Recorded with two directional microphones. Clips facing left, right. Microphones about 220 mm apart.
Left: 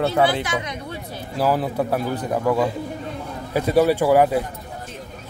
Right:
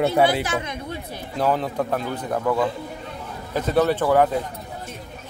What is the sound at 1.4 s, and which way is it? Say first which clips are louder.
Speech: left 1 dB; 5° left (ahead or behind).